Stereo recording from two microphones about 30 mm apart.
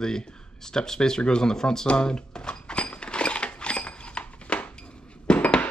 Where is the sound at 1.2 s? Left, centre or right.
Left.